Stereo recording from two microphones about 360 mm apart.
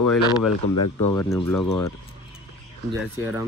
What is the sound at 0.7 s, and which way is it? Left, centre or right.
Speech, left.